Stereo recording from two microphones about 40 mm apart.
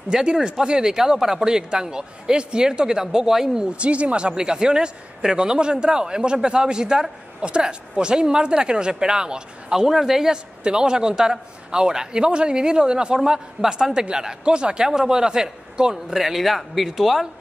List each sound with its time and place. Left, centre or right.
0.1 s speech: centre
3.7 s a man's voice: right
4.3 s a man's voice: centre
10.3 s a man's voice: right
16.1 s a man's voice: centre